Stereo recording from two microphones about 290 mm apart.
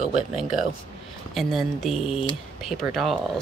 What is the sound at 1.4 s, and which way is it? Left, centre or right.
Speech, centre.